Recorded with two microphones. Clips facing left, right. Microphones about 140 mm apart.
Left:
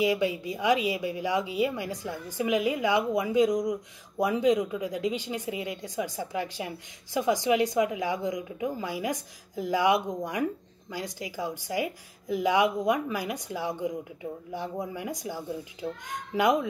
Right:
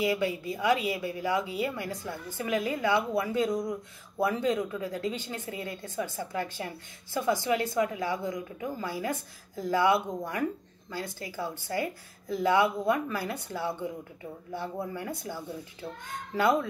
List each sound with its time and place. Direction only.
0.0 s a woman's voice: 15° left (ahead or behind)